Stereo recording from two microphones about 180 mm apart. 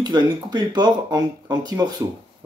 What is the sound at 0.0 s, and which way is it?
Speech, 25° right (ahead or behind).